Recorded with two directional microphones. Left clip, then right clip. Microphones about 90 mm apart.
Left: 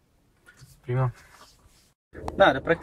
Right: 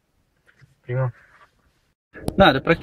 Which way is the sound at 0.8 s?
25° left (ahead or behind).